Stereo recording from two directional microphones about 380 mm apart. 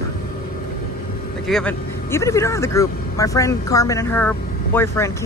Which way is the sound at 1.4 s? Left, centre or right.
Centre.